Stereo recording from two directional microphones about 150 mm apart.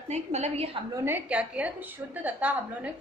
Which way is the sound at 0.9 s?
15° right (ahead or behind).